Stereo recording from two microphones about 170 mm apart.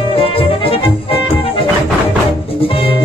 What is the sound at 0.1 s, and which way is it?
Music, 35° left (ahead or behind).